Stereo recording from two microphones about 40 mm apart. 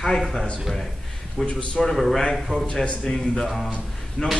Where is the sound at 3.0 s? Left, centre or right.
Centre.